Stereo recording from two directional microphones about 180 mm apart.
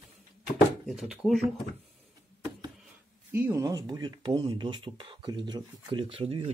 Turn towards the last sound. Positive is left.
turn(degrees=-35)  # may be behind; listen again after turning